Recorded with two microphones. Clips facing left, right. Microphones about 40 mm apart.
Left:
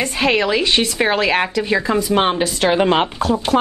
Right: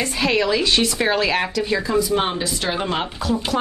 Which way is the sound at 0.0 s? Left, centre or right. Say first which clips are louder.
Left 3 dB; left.